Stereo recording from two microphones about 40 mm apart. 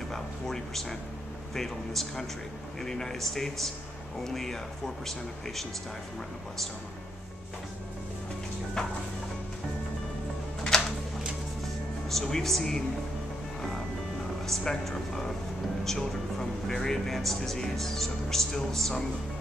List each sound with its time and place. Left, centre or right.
0.1 s speech: centre
8.8 s speech: centre
10.7 s a sound: centre
12.1 s speech: centre
14.4 s speech: centre